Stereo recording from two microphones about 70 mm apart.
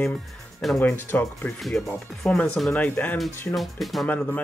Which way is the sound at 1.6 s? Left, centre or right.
Centre.